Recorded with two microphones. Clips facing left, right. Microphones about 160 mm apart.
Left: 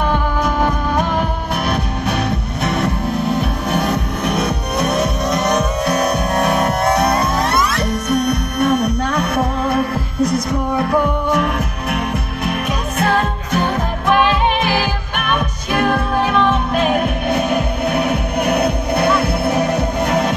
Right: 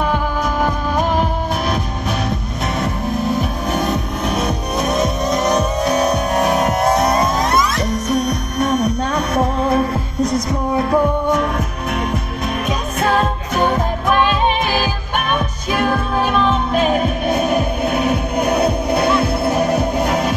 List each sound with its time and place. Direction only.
2.6 s music: 65° left (ahead or behind)
7.1 s music: 65° left (ahead or behind)